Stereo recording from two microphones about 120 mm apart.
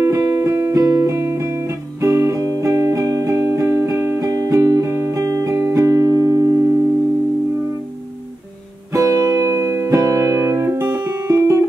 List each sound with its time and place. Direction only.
0.0 s music: 30° right (ahead or behind)
8.9 s music: 30° right (ahead or behind)